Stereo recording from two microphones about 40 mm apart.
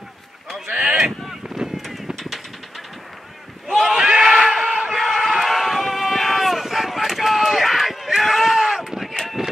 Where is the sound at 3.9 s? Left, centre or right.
Centre.